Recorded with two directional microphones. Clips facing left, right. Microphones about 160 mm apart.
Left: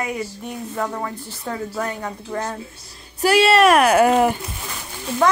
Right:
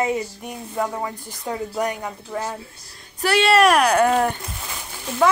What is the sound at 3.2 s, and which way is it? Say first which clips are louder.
Speech: left 2 dB; 10° left (ahead or behind).